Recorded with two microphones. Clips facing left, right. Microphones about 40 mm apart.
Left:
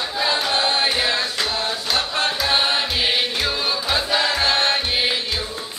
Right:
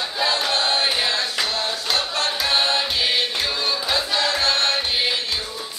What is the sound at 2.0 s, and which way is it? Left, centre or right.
Music, centre.